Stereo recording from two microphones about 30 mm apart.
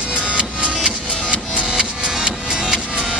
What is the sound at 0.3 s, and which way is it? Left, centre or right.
Music, right.